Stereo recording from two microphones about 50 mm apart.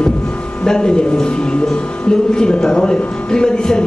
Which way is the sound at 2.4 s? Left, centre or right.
Centre.